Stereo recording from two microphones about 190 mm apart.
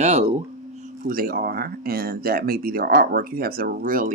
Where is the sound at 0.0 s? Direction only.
35° right (ahead or behind).